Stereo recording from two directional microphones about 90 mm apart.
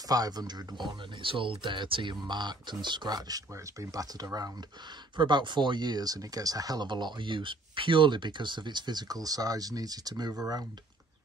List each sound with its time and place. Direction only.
0.1 s speech: 45° right (ahead or behind)
5.1 s speech: 60° right (ahead or behind); by 6.9 s 45° right (ahead or behind)
6.9 s speech: 60° right (ahead or behind)